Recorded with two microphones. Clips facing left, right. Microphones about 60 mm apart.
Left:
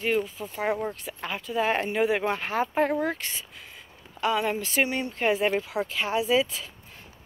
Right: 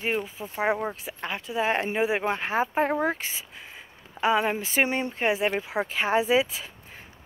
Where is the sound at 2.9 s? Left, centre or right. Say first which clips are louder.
Right 1 dB; right.